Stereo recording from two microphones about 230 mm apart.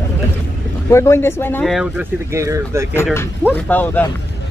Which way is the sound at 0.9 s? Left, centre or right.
Centre.